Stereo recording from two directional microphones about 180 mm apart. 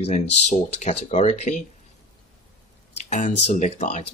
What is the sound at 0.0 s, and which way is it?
Speech, 35° left (ahead or behind).